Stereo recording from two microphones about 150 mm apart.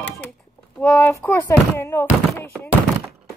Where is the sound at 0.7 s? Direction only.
10° left (ahead or behind).